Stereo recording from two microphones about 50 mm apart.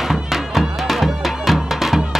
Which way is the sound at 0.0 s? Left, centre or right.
Centre.